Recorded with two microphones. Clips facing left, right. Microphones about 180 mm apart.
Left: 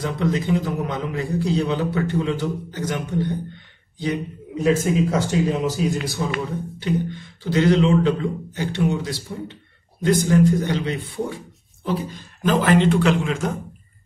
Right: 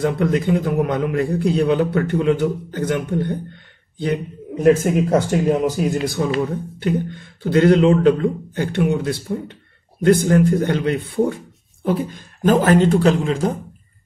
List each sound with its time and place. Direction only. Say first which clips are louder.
0.0 s a man's voice: right 4 dB; 55° right (ahead or behind); by 13.6 s 35° right (ahead or behind)